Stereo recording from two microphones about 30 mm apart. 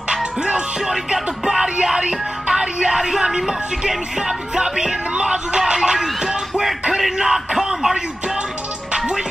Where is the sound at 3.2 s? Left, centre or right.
Centre.